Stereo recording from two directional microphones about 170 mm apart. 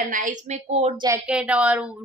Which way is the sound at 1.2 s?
5° right (ahead or behind).